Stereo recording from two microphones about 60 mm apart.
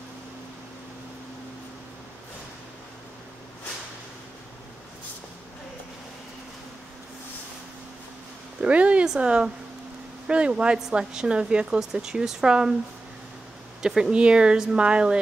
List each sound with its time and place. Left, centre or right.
8.5 s a sound: right
9.0 s speech: centre
13.8 s speech: centre